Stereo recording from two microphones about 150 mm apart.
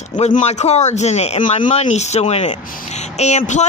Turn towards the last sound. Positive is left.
turn(degrees=50)  # may be behind; listen again after turning